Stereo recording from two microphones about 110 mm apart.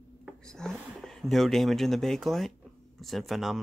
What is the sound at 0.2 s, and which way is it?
Speech, 5° left (ahead or behind).